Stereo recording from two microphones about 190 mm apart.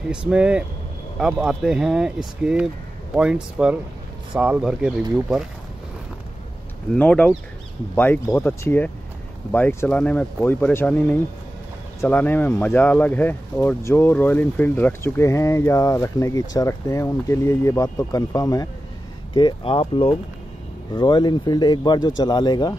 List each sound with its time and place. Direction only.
0.1 s speech: 5° right (ahead or behind)
7.0 s speech: 5° left (ahead or behind)